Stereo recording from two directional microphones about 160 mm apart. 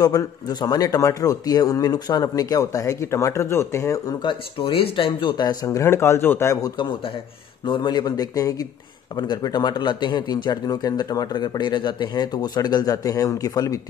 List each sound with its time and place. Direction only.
0.0 s a man's voice: 25° left (ahead or behind)